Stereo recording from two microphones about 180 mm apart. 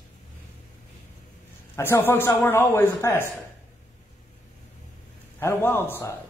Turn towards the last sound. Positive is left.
turn(degrees=15)  # may be behind; listen again after turning